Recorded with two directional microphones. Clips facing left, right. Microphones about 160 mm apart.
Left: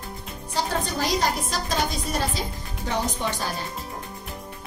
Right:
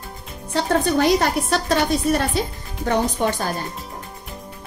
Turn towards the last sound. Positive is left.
turn(degrees=-50)  # may be behind; listen again after turning